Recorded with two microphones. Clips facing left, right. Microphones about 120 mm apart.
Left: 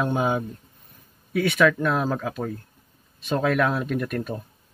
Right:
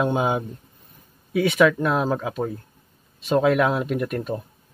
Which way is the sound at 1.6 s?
5° right (ahead or behind).